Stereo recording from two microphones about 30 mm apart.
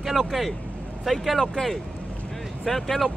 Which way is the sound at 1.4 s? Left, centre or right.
Centre.